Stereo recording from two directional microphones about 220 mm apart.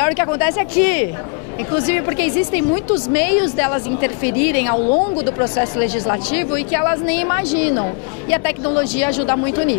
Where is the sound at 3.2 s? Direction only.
10° left (ahead or behind).